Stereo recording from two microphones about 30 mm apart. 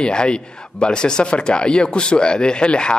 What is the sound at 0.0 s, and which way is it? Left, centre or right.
Speech, left.